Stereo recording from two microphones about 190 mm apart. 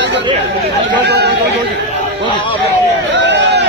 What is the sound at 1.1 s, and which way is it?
Chatter, 60° right (ahead or behind).